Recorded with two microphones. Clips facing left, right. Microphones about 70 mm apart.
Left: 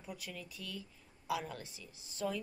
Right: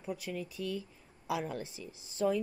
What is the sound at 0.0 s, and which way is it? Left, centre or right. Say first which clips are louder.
A woman's voice: right 8 dB; right.